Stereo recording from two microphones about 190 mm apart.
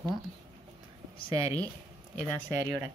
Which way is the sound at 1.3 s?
20° right (ahead or behind).